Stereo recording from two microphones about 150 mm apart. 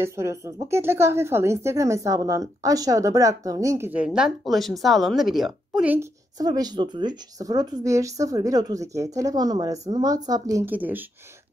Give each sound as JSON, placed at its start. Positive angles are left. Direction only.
{"t": 0.0, "sound": "speech", "side_deg": -20}
{"t": 5.9, "sound": "speech", "side_deg": -25}
{"t": 10.7, "sound": "speech", "side_deg": -10}